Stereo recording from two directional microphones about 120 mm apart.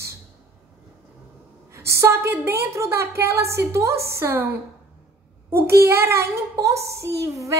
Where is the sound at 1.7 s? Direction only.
25° right (ahead or behind).